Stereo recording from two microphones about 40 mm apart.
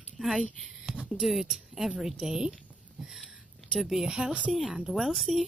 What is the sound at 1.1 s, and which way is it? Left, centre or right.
Speech, centre.